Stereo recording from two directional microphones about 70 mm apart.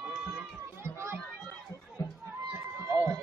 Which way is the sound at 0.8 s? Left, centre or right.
Right.